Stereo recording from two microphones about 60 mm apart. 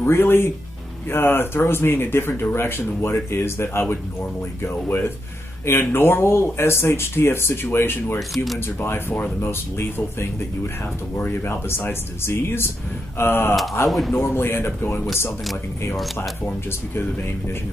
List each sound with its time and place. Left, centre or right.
0.0 s speech: left
11.1 s speech: left
13.8 s speech: centre
14.1 s speech: left
16.2 s speech: left